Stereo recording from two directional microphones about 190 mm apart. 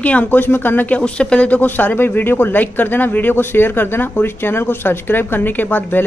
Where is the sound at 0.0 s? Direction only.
10° left (ahead or behind).